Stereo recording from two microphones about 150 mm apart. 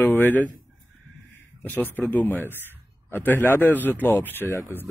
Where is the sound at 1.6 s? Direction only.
10° left (ahead or behind).